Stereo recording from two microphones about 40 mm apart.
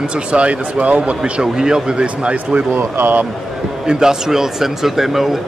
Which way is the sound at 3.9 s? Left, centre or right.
Centre.